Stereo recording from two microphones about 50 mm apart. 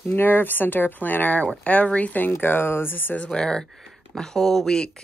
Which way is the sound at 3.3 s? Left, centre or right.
Centre.